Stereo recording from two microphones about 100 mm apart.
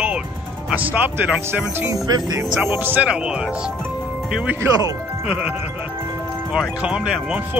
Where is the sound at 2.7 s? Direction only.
20° right (ahead or behind).